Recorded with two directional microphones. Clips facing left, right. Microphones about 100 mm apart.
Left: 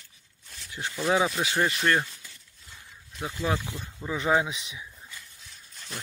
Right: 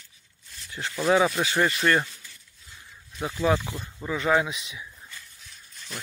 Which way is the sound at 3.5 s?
25° right (ahead or behind).